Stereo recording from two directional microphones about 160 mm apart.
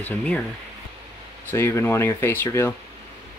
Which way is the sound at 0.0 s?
10° left (ahead or behind).